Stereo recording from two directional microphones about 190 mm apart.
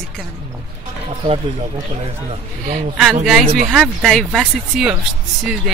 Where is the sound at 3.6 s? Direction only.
Centre (ahead or behind).